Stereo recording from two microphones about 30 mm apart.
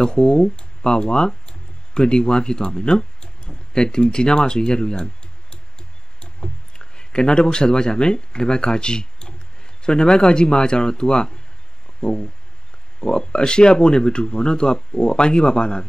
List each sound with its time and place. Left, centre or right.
0.0 s speech: left
12.0 s a sound: left
13.0 s speech: left